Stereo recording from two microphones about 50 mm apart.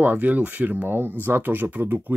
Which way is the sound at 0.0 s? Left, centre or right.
Right.